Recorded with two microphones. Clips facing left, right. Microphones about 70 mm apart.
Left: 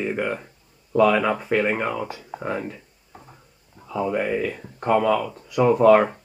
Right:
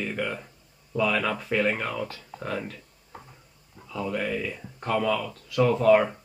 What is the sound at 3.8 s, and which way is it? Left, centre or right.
Speech, left.